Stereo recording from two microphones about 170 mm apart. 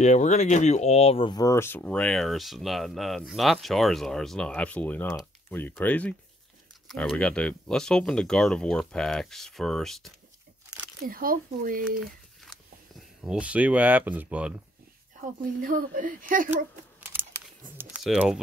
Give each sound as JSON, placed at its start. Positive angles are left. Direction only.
{"t": 0.0, "sound": "speech", "side_deg": 45}
{"t": 11.1, "sound": "speech", "side_deg": -55}
{"t": 13.2, "sound": "speech", "side_deg": -5}
{"t": 15.1, "sound": "speech", "side_deg": -55}
{"t": 17.7, "sound": "speech", "side_deg": -5}